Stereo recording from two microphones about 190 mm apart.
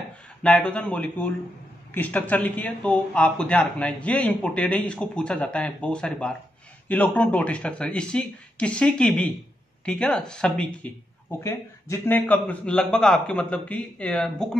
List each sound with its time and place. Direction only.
0.4 s speech: 5° left (ahead or behind)